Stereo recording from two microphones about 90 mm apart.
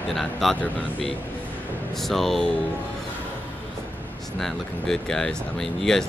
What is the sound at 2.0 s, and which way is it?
Speech, centre (ahead or behind).